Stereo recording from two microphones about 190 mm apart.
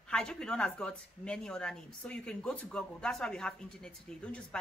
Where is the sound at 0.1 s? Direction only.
5° left (ahead or behind).